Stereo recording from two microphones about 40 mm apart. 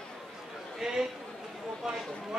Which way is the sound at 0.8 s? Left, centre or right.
Centre.